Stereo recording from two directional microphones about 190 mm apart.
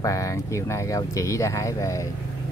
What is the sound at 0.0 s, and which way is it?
Speech, 15° left (ahead or behind).